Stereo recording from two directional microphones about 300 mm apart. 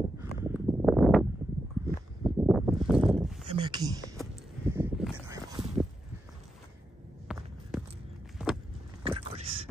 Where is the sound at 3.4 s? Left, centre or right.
Centre.